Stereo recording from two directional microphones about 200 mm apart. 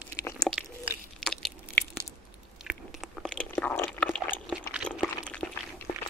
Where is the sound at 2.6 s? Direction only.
Centre (ahead or behind).